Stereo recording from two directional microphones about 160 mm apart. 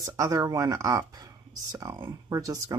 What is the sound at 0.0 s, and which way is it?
Speech, 20° right (ahead or behind).